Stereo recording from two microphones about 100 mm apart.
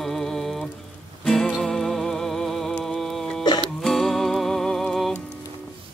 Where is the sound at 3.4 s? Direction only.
45° left (ahead or behind).